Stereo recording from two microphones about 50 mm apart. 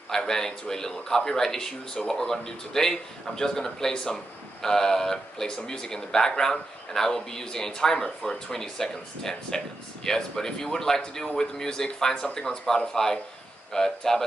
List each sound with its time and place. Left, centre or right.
0.1 s speech: centre